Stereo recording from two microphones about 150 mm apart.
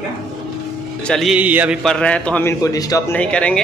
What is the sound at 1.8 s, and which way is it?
Speech, 5° left (ahead or behind).